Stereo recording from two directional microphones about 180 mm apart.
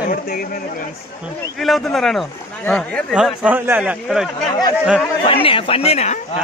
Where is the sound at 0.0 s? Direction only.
55° left (ahead or behind).